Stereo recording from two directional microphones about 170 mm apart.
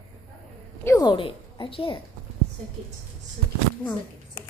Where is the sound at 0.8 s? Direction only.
20° left (ahead or behind).